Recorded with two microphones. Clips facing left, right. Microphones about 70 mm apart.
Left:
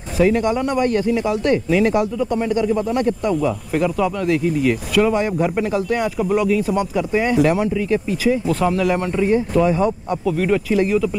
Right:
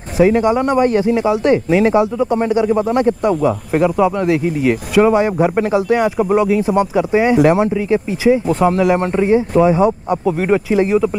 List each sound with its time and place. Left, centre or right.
0.2 s speech: right